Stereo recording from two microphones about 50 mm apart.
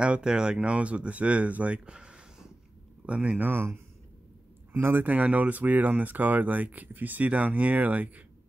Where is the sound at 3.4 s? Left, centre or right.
Right.